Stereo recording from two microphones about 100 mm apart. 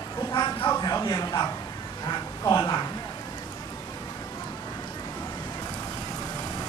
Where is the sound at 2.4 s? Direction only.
35° left (ahead or behind).